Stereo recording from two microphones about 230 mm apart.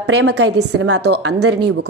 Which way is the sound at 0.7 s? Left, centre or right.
Right.